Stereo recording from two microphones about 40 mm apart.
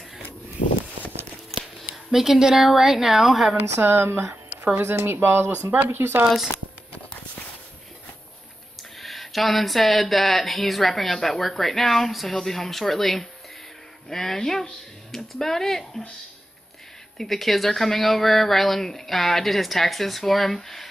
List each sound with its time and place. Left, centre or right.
2.0 s a woman's voice: centre
3.8 s speech: right
9.0 s speech: centre
17.2 s speech: centre